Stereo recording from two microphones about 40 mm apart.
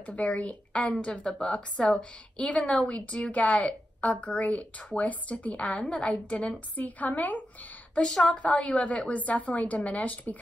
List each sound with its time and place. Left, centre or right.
0.0 s a woman's voice: left
6.8 s a woman's voice: left
8.0 s speech: left
8.3 s a woman's voice: left